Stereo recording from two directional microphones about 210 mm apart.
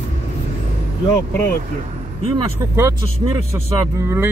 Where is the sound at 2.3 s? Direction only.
15° right (ahead or behind).